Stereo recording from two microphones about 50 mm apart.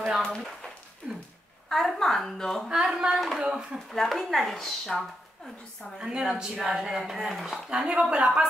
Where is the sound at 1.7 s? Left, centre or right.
Centre.